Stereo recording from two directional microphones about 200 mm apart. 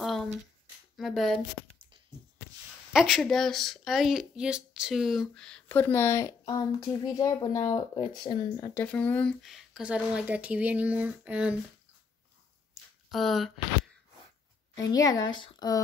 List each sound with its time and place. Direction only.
0.0 s a sound: centre (ahead or behind)
0.9 s speech: centre (ahead or behind)
2.9 s speech: centre (ahead or behind); by 8.7 s 25° left (ahead or behind)
8.7 s speech: 10° left (ahead or behind)
13.1 s speech: centre (ahead or behind)
14.8 s speech: 15° left (ahead or behind)